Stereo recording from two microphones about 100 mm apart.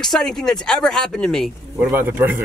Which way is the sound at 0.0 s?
5° left (ahead or behind).